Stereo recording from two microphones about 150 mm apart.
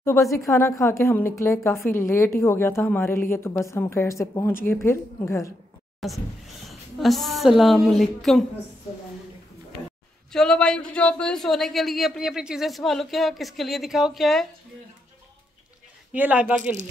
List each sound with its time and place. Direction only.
0.0 s a woman's voice: 20° left (ahead or behind)
5.9 s a woman's voice: centre (ahead or behind)
10.3 s speech: 5° left (ahead or behind)
16.1 s speech: 10° right (ahead or behind)